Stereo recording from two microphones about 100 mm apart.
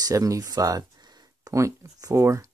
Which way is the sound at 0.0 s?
35° right (ahead or behind).